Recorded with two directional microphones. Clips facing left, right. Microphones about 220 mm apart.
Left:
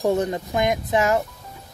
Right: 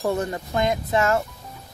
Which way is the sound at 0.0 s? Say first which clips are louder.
Left 3 dB; 20° left (ahead or behind).